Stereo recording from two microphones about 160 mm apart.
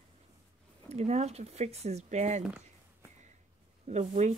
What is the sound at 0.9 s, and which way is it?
Speech, 40° right (ahead or behind).